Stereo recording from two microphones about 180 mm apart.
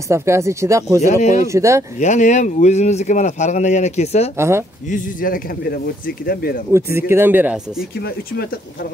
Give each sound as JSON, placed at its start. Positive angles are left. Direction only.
{"t": 0.1, "sound": "speech", "side_deg": -15}
{"t": 1.0, "sound": "speech", "side_deg": 40}
{"t": 1.5, "sound": "speech", "side_deg": -15}
{"t": 2.0, "sound": "speech", "side_deg": 40}
{"t": 4.4, "sound": "speech", "side_deg": -15}
{"t": 4.8, "sound": "speech", "side_deg": 50}
{"t": 6.7, "sound": "speech", "side_deg": -15}